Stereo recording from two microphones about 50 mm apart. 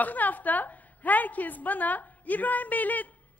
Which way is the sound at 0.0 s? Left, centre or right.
Left.